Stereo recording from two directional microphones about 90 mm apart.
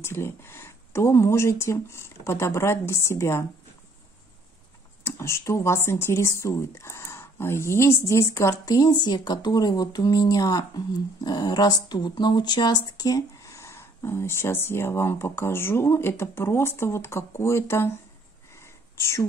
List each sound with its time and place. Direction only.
0.0 s speech: 30° left (ahead or behind)
5.0 s speech: 30° left (ahead or behind)
18.5 s whispering: 30° left (ahead or behind)